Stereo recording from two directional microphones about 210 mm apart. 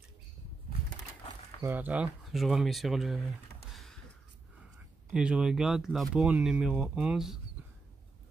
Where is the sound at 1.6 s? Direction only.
10° right (ahead or behind).